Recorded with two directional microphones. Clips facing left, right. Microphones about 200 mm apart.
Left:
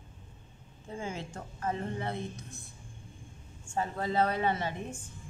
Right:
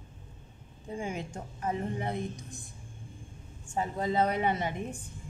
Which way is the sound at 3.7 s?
20° right (ahead or behind).